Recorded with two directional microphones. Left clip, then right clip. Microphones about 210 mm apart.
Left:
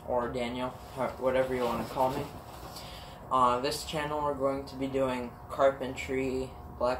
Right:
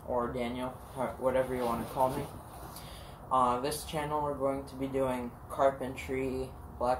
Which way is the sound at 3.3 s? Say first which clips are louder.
Left 2 dB; 5° left (ahead or behind).